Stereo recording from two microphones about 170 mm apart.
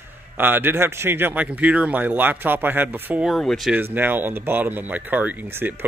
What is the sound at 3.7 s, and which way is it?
Speech, 10° right (ahead or behind).